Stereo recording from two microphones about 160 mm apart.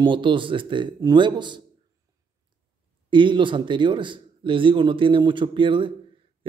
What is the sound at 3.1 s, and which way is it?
A man's voice, 30° right (ahead or behind).